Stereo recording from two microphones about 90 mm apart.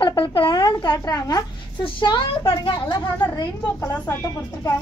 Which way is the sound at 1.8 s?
60° left (ahead or behind).